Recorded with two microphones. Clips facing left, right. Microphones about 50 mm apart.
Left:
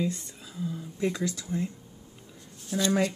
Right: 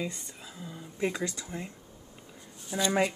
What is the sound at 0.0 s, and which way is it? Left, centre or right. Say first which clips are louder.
Speech: left 5 dB; centre.